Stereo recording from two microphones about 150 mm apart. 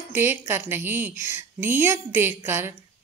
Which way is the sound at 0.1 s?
15° right (ahead or behind).